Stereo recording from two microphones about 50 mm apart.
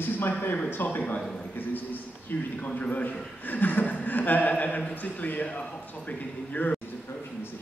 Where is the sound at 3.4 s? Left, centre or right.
Left.